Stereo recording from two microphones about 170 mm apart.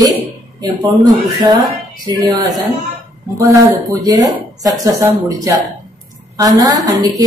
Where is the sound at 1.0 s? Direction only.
25° right (ahead or behind).